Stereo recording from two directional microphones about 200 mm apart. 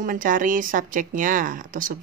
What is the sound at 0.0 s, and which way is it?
Speech, 40° right (ahead or behind).